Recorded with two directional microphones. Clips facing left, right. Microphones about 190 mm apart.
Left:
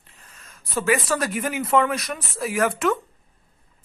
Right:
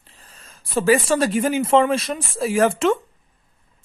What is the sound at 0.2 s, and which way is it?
Speech, 30° right (ahead or behind).